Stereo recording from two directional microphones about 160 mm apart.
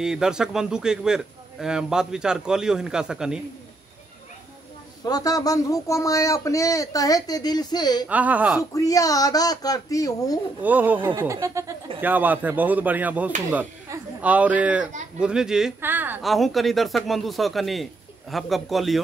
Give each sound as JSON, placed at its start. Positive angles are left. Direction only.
{"t": 0.0, "sound": "a man's voice", "side_deg": -5}
{"t": 5.0, "sound": "speech", "side_deg": 25}
{"t": 8.1, "sound": "speech", "side_deg": -10}
{"t": 8.7, "sound": "speech", "side_deg": 20}
{"t": 10.6, "sound": "a man's voice", "side_deg": -10}
{"t": 16.2, "sound": "a man's voice", "side_deg": 0}